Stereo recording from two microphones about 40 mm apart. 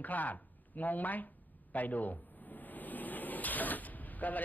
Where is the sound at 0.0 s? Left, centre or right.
Left.